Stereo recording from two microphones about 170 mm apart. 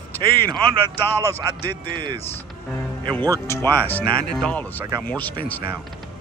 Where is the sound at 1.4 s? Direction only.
20° right (ahead or behind).